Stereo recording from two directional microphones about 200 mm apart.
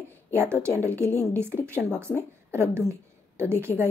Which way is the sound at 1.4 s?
10° right (ahead or behind).